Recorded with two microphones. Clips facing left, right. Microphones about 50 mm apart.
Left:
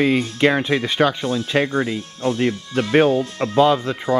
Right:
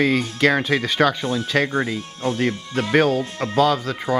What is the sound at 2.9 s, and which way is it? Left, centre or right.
Speech, centre.